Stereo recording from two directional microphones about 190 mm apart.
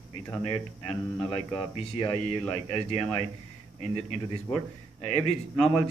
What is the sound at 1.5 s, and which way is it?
Speech, 30° left (ahead or behind).